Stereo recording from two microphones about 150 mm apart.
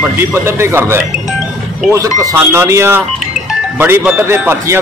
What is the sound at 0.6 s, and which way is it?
Speech, 15° right (ahead or behind).